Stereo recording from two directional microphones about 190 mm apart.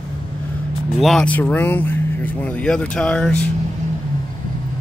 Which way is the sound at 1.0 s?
Centre (ahead or behind).